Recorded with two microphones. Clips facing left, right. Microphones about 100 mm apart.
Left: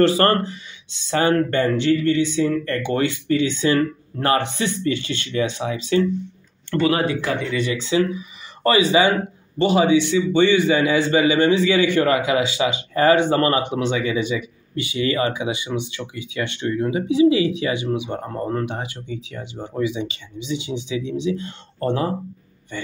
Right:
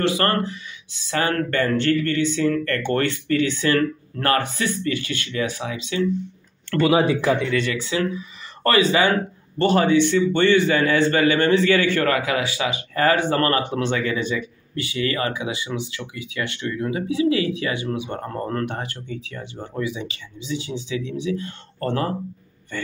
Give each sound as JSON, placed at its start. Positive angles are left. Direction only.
{"t": 0.3, "sound": "a man's voice", "side_deg": 30}
{"t": 6.8, "sound": "speech", "side_deg": -5}
{"t": 7.5, "sound": "a man's voice", "side_deg": 15}